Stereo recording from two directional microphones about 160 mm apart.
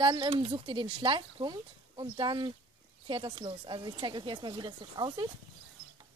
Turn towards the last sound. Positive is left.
turn(degrees=-30)  # may be behind; listen again after turning